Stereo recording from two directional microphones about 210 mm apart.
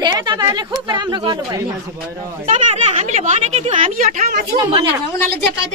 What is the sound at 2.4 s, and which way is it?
A man's voice, 35° right (ahead or behind).